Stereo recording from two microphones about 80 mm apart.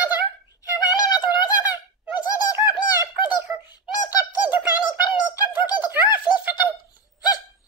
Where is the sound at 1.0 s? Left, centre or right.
Left.